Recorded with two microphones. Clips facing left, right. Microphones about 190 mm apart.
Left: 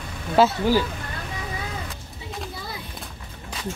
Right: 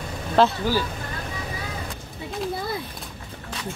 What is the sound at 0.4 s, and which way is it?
Speech, 5° left (ahead or behind).